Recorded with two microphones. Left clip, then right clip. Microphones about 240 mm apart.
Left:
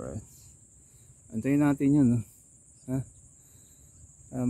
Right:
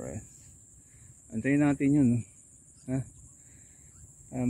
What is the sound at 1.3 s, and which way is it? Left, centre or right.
Speech, centre.